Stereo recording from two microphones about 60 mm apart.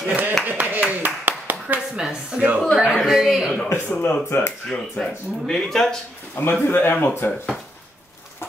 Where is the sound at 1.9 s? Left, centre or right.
Centre.